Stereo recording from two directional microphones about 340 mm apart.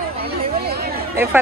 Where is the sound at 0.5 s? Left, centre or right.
Right.